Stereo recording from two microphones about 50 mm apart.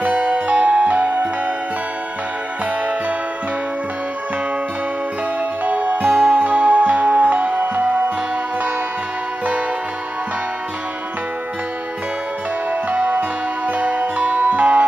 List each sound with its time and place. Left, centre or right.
0.0 s music: right
5.7 s music: right
6.0 s music: centre
6.3 s music: right
12.9 s music: right